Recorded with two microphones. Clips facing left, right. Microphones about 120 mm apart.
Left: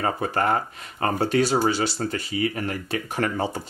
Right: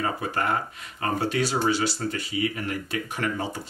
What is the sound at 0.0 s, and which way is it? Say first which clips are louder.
Speech: left 3 dB; 40° left (ahead or behind).